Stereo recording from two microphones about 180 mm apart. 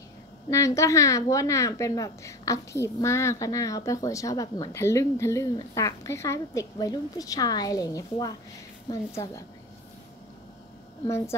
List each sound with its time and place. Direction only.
0.5 s a woman's voice: 15° left (ahead or behind)
11.1 s a woman's voice: 15° left (ahead or behind)